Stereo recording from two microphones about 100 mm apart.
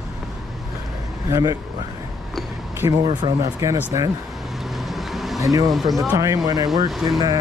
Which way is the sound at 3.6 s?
30° right (ahead or behind).